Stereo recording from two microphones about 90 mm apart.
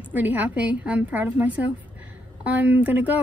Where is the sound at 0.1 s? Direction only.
20° right (ahead or behind).